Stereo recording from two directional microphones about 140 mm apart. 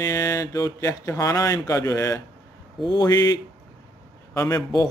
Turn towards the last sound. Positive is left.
turn(degrees=25)  # may be behind; listen again after turning